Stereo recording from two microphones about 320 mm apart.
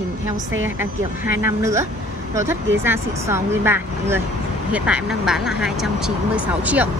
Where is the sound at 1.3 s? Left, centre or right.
Centre.